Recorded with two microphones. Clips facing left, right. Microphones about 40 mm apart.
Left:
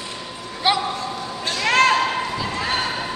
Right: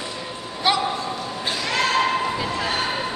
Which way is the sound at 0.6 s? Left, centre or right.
Centre.